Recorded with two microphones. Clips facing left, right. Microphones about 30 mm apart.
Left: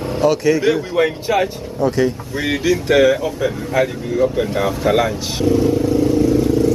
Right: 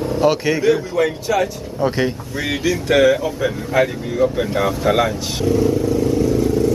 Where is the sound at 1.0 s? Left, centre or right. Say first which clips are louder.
Left 1 dB; left.